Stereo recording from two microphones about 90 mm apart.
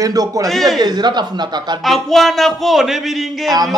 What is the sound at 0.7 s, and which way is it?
A man's voice, 50° right (ahead or behind).